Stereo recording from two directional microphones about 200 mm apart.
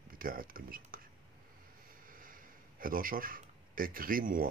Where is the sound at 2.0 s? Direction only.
45° right (ahead or behind).